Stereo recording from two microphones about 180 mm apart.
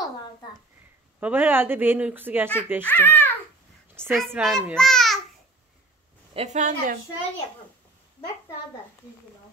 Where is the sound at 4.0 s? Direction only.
10° right (ahead or behind).